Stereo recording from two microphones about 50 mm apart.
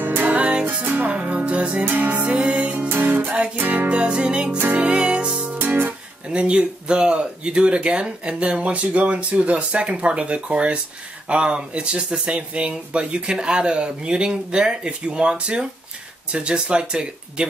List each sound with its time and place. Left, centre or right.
0.0 s music: right
2.9 s music: right
3.5 s speech: right
4.7 s music: right
5.6 s guitar: right
6.2 s speech: right